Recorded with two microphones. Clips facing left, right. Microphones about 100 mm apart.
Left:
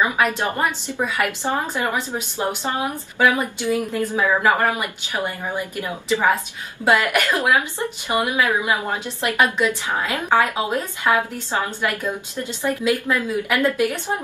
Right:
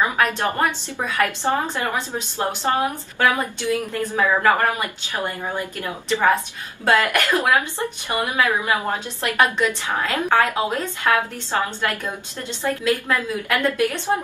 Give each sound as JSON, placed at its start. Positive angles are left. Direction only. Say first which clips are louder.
{"t": 0.0, "sound": "a woman's voice", "louder": "even", "side_deg": 15}